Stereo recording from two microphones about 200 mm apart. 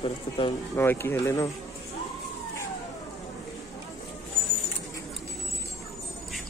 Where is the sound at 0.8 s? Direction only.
10° left (ahead or behind).